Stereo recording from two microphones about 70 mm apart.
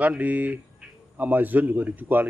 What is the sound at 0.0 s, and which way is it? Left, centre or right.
Speech, right.